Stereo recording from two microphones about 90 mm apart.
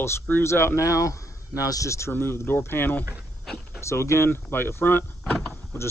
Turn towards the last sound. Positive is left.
turn(degrees=30)  # may be behind; listen again after turning